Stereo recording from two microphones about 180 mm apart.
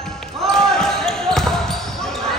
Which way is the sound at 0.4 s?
Centre (ahead or behind).